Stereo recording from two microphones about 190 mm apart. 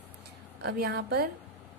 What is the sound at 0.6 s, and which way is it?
Speech, 55° right (ahead or behind).